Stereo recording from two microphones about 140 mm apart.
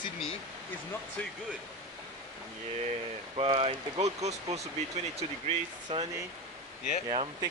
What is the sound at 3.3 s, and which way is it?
Speech, 40° right (ahead or behind).